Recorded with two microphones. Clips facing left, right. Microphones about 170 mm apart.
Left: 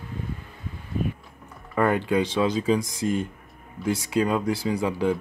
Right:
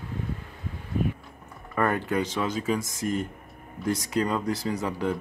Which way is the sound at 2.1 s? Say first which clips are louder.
Left 4 dB; 15° left (ahead or behind).